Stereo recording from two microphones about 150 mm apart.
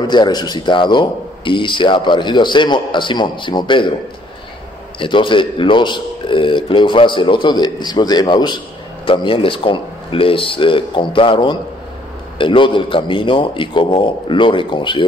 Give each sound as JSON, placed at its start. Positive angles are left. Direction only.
{"t": 0.0, "sound": "speech", "side_deg": 30}
{"t": 4.9, "sound": "speech", "side_deg": 35}